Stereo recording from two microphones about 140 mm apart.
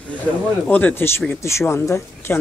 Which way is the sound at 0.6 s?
10° left (ahead or behind).